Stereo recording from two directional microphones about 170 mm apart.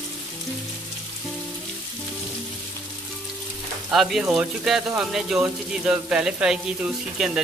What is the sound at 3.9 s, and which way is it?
Speech, centre (ahead or behind).